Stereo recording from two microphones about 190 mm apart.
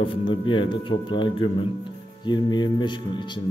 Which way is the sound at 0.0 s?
25° left (ahead or behind).